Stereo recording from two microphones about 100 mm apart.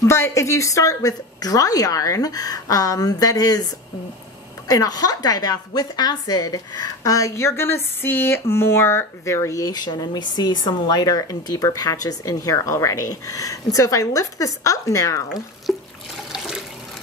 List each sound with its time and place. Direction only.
0.0 s a woman's voice: 30° left (ahead or behind)
4.6 s a woman's voice: 40° left (ahead or behind)
15.7 s water: centre (ahead or behind)